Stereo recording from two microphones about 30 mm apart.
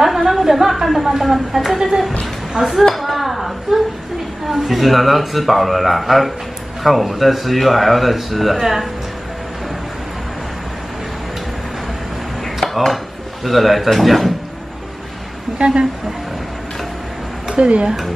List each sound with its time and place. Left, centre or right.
0.0 s a sound: centre
1.0 s speech: centre
1.8 s a sound: centre
2.6 s speech: right
2.9 s a sound: centre
4.5 s speech: centre
12.5 s speech: centre
15.6 s speech: right
17.6 s speech: right